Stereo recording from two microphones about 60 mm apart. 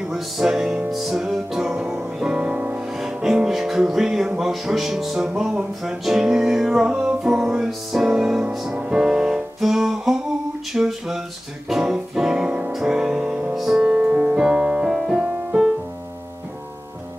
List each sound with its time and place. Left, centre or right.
0.1 s music: centre
3.0 s music: centre
10.7 s speech: centre
11.7 s music: centre
12.7 s music: centre